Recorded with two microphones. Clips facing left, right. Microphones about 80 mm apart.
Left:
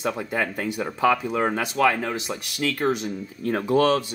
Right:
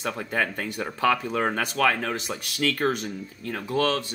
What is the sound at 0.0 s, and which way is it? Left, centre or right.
Speech, centre.